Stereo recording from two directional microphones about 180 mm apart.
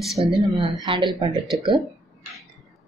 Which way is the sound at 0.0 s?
Centre (ahead or behind).